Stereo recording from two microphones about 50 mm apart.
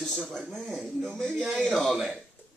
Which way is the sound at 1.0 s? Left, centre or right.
Centre.